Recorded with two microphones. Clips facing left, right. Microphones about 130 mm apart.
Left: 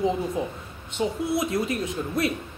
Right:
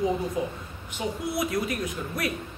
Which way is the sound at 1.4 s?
25° left (ahead or behind).